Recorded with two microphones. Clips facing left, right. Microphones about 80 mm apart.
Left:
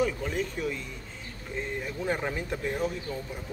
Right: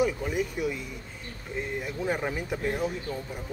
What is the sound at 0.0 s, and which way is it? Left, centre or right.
Speech, centre.